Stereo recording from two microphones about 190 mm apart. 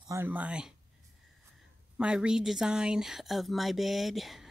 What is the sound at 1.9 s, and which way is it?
Speech, 5° right (ahead or behind).